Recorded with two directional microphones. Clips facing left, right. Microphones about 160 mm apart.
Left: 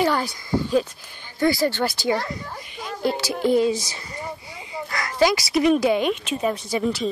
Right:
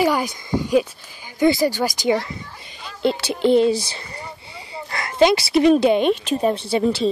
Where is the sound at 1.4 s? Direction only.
15° right (ahead or behind).